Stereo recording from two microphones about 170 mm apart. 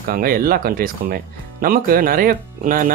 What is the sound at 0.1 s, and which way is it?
Speech, 60° right (ahead or behind).